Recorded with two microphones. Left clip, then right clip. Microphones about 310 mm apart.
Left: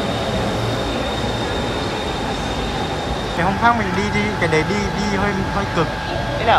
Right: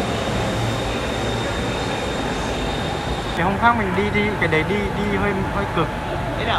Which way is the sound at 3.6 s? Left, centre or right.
Centre.